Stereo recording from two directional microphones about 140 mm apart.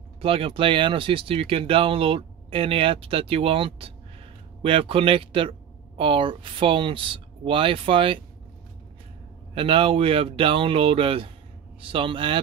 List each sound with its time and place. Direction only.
0.2 s speech: 40° right (ahead or behind)
9.6 s speech: 40° right (ahead or behind)